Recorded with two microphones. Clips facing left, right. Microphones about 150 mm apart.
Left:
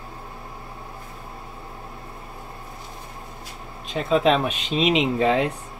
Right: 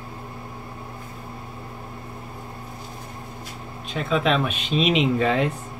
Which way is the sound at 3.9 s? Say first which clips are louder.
Left 3 dB; 35° left (ahead or behind).